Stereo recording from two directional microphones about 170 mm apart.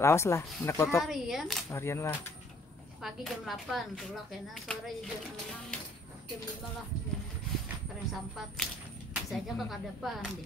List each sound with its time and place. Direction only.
0.0 s speech: 15° left (ahead or behind)
1.0 s speech: centre (ahead or behind)
1.7 s speech: 15° left (ahead or behind)
3.0 s speech: centre (ahead or behind)
7.6 s a sound: centre (ahead or behind)
9.1 s speech: centre (ahead or behind)